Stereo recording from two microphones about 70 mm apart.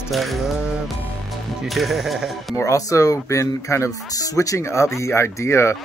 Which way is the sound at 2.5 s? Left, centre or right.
Left.